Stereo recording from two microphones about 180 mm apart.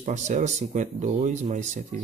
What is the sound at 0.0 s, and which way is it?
Speech, 40° right (ahead or behind).